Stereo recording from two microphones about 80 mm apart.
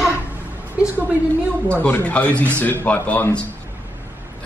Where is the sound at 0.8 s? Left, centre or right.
Centre.